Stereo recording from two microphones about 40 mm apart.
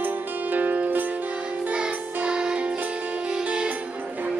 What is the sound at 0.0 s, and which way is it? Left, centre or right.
Music, right.